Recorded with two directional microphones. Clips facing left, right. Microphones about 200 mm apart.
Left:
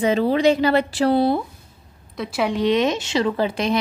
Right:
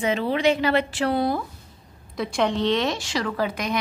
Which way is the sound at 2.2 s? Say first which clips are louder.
Left 1 dB; 5° left (ahead or behind).